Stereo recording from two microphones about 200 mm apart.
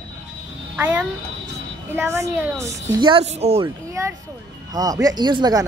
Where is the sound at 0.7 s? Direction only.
10° right (ahead or behind); by 3.7 s 30° right (ahead or behind).